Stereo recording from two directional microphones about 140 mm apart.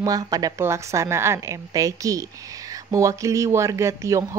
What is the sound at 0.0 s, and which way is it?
Speech, 25° right (ahead or behind).